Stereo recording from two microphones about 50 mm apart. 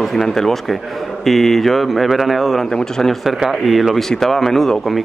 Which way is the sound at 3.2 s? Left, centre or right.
Centre.